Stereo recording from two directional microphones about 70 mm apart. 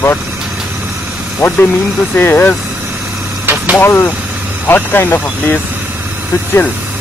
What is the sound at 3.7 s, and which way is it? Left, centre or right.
Speech, left.